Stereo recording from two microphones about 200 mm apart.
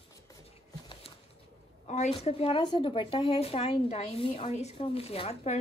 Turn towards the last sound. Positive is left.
turn(degrees=30)  # may be behind; listen again after turning